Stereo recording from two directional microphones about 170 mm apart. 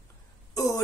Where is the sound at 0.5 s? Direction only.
20° left (ahead or behind).